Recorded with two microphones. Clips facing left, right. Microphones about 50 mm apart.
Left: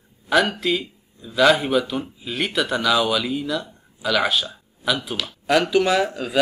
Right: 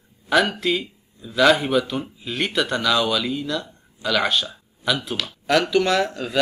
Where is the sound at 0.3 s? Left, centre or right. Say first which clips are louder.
Even; centre.